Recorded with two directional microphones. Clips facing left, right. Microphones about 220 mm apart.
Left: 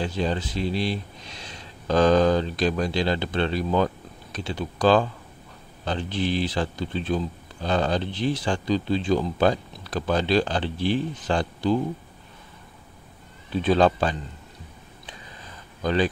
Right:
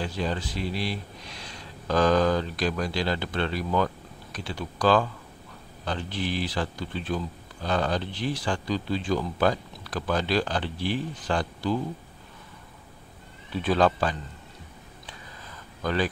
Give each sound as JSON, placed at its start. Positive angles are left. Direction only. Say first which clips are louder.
{"t": 0.0, "sound": "speech", "louder": "left 3 dB", "side_deg": 25}
{"t": 13.6, "sound": "speech", "louder": "left 3 dB", "side_deg": 25}
{"t": 15.8, "sound": "speech", "louder": "left 4 dB", "side_deg": 20}